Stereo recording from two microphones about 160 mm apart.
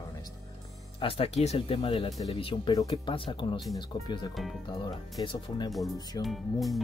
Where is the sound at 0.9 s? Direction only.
35° left (ahead or behind).